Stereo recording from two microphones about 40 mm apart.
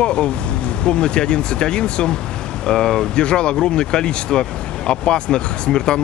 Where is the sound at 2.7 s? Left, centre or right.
Centre.